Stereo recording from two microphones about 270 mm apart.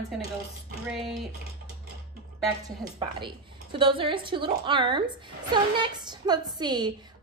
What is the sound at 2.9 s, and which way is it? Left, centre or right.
A woman's voice, centre.